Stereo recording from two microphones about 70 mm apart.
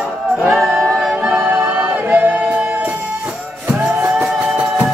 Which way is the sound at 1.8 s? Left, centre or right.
Right.